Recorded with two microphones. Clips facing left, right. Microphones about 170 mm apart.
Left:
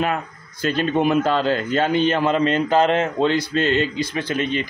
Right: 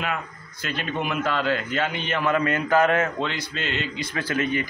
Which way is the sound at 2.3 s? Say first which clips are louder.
Left 3 dB; 25° left (ahead or behind).